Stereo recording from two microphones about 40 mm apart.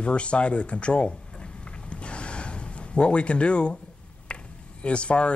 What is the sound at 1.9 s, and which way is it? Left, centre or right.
Gasp, left.